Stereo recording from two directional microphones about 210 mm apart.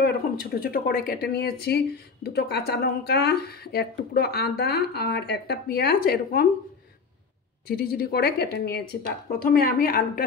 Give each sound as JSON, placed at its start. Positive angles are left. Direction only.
{"t": 0.0, "sound": "speech", "side_deg": 45}
{"t": 7.6, "sound": "speech", "side_deg": 45}